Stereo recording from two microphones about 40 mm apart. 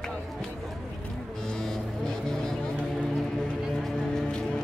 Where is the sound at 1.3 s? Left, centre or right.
Centre.